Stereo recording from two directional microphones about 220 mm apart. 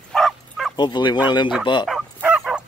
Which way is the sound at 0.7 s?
20° left (ahead or behind).